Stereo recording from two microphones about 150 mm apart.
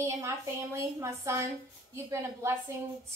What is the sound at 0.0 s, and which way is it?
A woman's voice, 20° right (ahead or behind).